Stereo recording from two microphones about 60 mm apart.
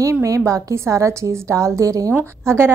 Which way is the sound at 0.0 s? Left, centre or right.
Right.